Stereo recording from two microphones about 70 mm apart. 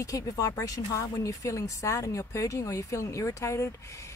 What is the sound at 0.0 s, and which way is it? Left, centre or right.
Speech, left.